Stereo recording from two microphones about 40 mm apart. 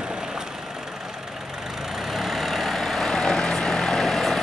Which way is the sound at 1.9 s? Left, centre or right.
Centre.